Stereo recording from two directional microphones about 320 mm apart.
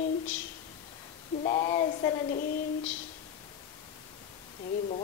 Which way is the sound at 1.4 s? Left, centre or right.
Centre.